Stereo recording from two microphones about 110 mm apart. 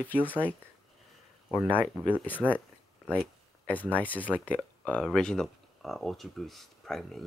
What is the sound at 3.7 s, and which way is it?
Speech, 15° left (ahead or behind).